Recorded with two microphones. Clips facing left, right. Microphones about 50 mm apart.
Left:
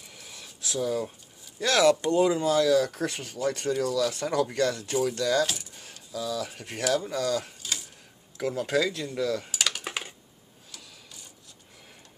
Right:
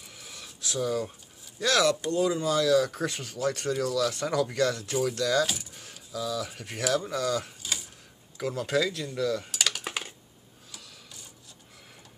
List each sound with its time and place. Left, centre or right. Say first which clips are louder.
0.0 s a sound: even; centre
1.9 s speech: left 4 dB; left
2.4 s speech: left 1 dB; centre
7.0 s a sound: left 1 dB; centre
8.4 s speech: left 1 dB; centre
8.9 s computer keyboard: even; centre
10.7 s printer: even; centre